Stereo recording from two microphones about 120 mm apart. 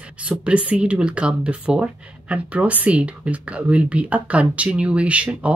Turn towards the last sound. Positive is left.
turn(degrees=-10)  # may be behind; listen again after turning